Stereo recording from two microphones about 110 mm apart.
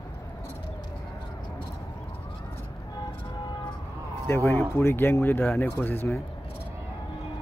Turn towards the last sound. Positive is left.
turn(degrees=20)  # may be behind; listen again after turning